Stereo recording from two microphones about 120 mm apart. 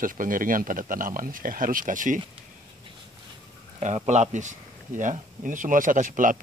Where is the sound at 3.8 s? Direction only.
75° right (ahead or behind).